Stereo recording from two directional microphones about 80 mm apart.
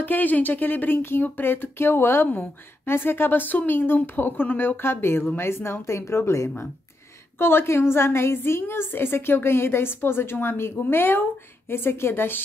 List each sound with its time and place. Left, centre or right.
0.0 s a woman's voice: left